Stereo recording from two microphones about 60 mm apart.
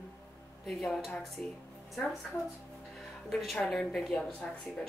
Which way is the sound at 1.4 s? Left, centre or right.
Left.